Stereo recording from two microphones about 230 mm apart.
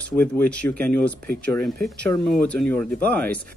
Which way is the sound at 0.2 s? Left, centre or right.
Centre.